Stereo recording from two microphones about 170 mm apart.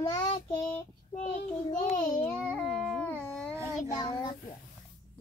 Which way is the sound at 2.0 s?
20° left (ahead or behind).